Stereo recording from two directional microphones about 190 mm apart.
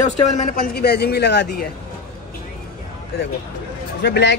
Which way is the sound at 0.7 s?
60° left (ahead or behind).